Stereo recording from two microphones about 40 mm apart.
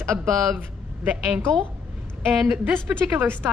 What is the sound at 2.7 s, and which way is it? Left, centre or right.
Speech, right.